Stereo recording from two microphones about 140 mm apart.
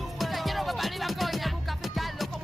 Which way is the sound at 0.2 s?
Centre (ahead or behind).